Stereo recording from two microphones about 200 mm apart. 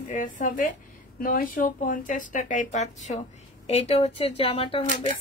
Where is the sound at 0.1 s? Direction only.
40° left (ahead or behind).